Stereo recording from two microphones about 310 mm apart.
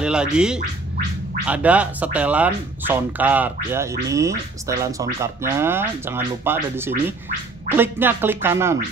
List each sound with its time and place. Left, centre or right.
0.0 s speech: centre